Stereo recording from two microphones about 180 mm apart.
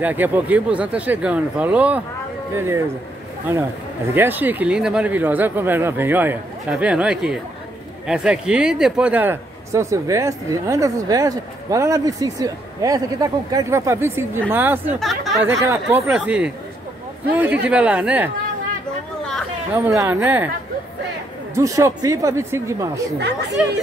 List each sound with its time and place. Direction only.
0.0 s speech: 10° right (ahead or behind)
4.1 s speech: 10° right (ahead or behind)
15.0 s speech: centre (ahead or behind)
15.4 s speech: 15° right (ahead or behind)
19.7 s speech: 15° right (ahead or behind)
21.5 s speech: 15° right (ahead or behind)